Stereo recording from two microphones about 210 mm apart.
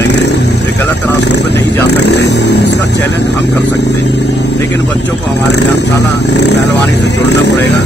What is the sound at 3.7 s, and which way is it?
Vehicle, 55° left (ahead or behind).